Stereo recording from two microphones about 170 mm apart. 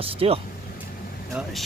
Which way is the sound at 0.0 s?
35° right (ahead or behind).